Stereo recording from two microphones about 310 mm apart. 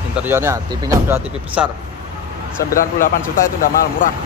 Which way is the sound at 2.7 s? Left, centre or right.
Left.